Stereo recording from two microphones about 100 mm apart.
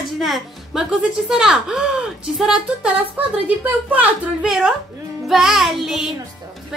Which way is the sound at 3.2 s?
15° right (ahead or behind).